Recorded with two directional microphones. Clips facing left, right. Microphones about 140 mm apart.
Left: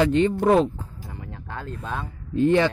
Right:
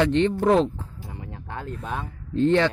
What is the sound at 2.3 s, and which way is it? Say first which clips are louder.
Speech: left 1 dB; 10° left (ahead or behind).